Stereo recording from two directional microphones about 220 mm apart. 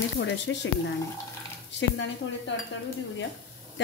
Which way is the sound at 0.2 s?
55° left (ahead or behind).